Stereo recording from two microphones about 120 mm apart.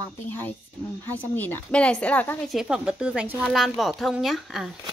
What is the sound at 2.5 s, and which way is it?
Speech, 5° right (ahead or behind).